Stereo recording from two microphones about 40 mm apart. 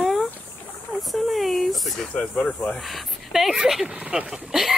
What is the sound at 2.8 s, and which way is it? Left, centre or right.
Speech, centre.